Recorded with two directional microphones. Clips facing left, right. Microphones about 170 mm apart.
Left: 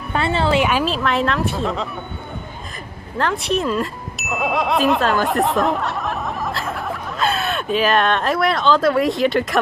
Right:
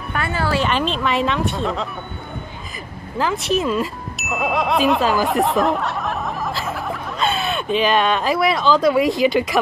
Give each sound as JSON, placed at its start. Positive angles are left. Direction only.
{"t": 0.1, "sound": "a woman's voice", "side_deg": 25}
{"t": 0.7, "sound": "speech", "side_deg": 5}
{"t": 3.2, "sound": "speech", "side_deg": 0}